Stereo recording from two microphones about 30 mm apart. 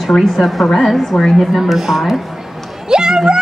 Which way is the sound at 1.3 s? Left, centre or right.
Centre.